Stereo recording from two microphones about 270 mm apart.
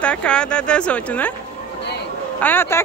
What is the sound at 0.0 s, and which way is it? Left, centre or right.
Speech, centre.